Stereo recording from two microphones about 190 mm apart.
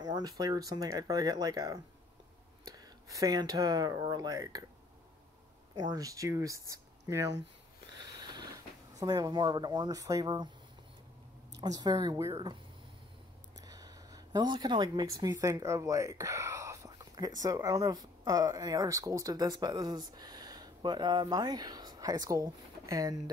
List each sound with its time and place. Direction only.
0.0 s speech: 20° right (ahead or behind)
5.8 s speech: 20° right (ahead or behind)
8.2 s a sound: 20° right (ahead or behind)
9.0 s speech: 20° right (ahead or behind)
11.5 s speech: 20° right (ahead or behind)
13.7 s a sound: 20° right (ahead or behind)
15.1 s speech: 20° right (ahead or behind)